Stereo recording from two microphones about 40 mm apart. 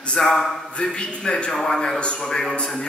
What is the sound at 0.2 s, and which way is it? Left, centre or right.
Speech, centre.